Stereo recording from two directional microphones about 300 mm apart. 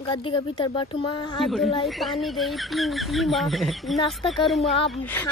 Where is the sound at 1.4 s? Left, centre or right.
Centre.